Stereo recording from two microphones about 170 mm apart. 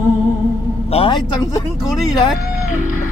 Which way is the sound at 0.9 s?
35° left (ahead or behind).